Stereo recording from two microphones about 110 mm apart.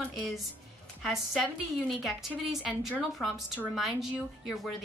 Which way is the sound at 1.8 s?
Centre (ahead or behind).